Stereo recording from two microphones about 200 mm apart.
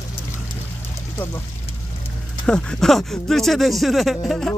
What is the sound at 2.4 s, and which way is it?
Speech, 5° left (ahead or behind).